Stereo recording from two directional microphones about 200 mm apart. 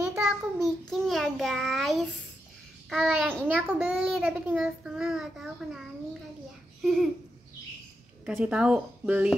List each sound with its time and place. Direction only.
0.0 s child singing: 5° right (ahead or behind)
2.9 s a child's voice: centre (ahead or behind)
8.3 s a child's voice: 5° right (ahead or behind)